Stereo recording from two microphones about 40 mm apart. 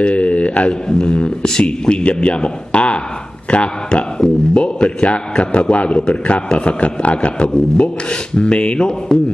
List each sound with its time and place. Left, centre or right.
0.0 s a sound: left
0.8 s speech: left
1.4 s a man's voice: centre
1.7 s speech: left